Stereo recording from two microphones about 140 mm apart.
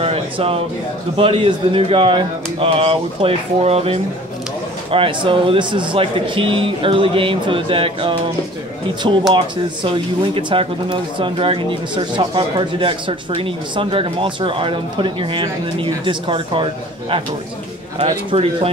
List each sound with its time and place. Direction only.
0.0 s a sound: 45° right (ahead or behind)
1.1 s speech: 40° right (ahead or behind)
17.9 s speech: 50° right (ahead or behind)